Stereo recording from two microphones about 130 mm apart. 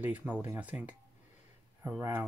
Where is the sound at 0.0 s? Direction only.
15° right (ahead or behind).